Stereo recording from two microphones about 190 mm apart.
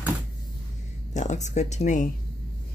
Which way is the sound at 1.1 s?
40° left (ahead or behind).